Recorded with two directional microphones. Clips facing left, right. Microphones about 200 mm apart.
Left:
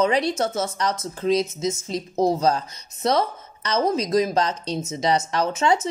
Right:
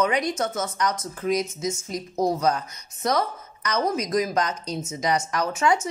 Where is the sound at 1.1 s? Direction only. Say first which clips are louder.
Left 5 dB; 30° left (ahead or behind).